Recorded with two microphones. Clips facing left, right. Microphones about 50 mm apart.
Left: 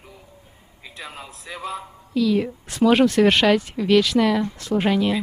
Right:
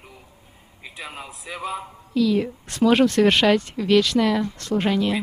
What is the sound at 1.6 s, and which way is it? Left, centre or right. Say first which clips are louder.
A man's voice: right 1 dB; centre.